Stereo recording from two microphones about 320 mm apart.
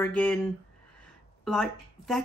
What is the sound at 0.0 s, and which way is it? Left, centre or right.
Speech, centre.